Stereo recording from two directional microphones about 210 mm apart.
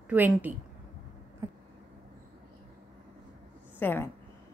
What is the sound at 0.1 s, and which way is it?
Speech, 10° right (ahead or behind).